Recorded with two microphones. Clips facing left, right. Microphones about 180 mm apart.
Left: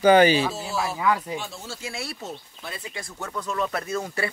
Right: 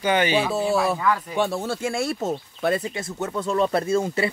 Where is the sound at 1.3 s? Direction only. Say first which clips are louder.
Right 9 dB; 65° right (ahead or behind).